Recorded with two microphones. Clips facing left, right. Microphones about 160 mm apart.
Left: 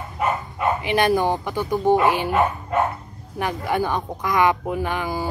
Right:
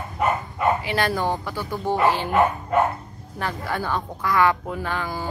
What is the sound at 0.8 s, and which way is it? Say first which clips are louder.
A woman's voice: left 4 dB; 20° left (ahead or behind).